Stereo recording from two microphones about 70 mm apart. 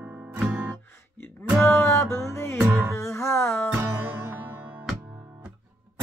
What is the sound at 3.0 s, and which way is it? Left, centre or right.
Music, left.